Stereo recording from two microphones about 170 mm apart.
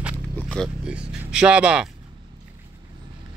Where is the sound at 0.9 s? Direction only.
5° right (ahead or behind).